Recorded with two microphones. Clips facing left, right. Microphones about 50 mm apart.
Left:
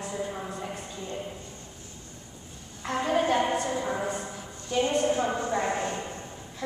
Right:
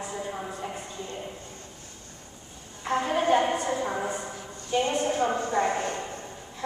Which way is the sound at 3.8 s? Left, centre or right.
Centre.